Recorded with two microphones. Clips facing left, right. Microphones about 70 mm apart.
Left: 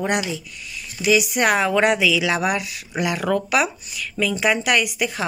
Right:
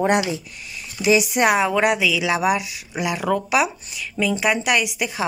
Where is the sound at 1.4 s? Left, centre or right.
Centre.